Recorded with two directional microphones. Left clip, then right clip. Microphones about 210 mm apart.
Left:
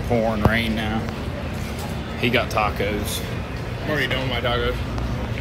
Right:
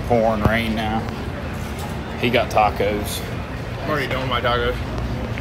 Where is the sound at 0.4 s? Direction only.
Centre (ahead or behind).